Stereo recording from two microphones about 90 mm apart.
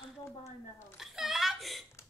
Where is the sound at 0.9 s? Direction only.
5° right (ahead or behind).